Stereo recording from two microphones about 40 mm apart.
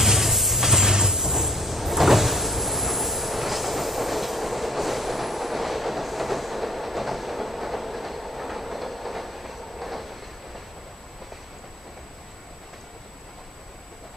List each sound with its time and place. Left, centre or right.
0.0 s train: centre